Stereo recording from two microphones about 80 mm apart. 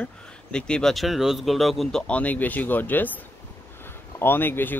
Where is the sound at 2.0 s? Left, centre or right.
Centre.